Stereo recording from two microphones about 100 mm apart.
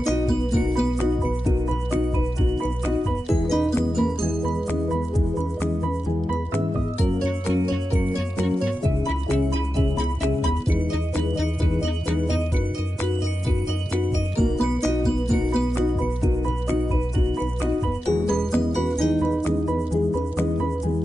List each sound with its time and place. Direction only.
3.4 s music: centre (ahead or behind)
14.4 s music: 5° left (ahead or behind)
18.9 s music: centre (ahead or behind)